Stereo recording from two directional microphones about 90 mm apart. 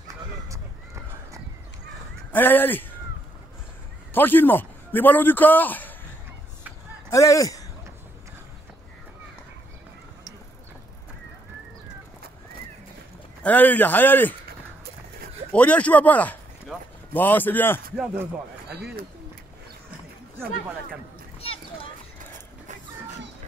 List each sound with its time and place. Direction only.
2.3 s speech: 20° left (ahead or behind)
4.1 s a man's voice: 20° left (ahead or behind)
7.1 s speech: 40° left (ahead or behind)
13.4 s speech: 20° left (ahead or behind)
15.5 s speech: 15° left (ahead or behind)
21.4 s a sound: 90° left